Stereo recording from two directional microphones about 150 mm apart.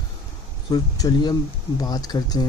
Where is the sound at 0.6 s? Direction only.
25° left (ahead or behind).